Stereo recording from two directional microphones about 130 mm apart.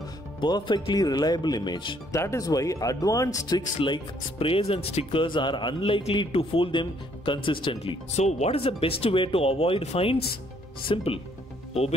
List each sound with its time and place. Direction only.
0.4 s speech: 35° left (ahead or behind)
2.1 s speech: 25° left (ahead or behind); by 8.0 s 40° left (ahead or behind)
8.2 s speech: 60° left (ahead or behind); by 11.1 s 40° left (ahead or behind)